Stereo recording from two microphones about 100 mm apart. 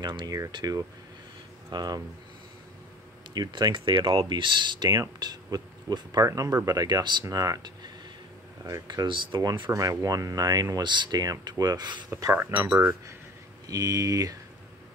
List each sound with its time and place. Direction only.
0.0 s speech: 50° right (ahead or behind)
3.3 s speech: 50° right (ahead or behind)
9.0 s speech: 55° right (ahead or behind)
9.4 s speech: 40° right (ahead or behind)
12.1 s speech: 30° right (ahead or behind)
13.7 s speech: 35° right (ahead or behind)